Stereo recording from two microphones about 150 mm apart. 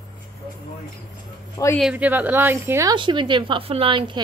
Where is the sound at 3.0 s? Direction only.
30° right (ahead or behind).